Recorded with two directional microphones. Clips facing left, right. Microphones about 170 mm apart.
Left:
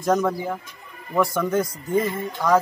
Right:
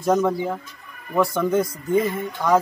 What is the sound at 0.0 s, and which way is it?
Speech, 5° right (ahead or behind).